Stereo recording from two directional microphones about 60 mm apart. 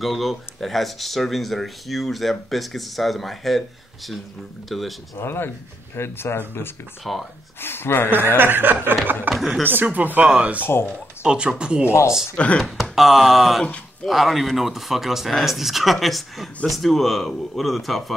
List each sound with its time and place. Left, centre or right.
0.0 s speech: centre
5.1 s speech: left
7.0 s speech: centre
7.6 s speech: left
8.4 s chuckle: right
9.3 s speech: centre
9.8 s speech: right
10.6 s speech: left
11.2 s speech: centre
11.8 s speech: left
12.4 s speech: centre
12.9 s speech: centre